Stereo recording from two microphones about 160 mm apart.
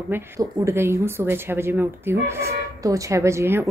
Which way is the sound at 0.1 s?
15° right (ahead or behind).